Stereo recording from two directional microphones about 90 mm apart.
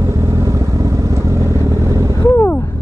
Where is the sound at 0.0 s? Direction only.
35° right (ahead or behind).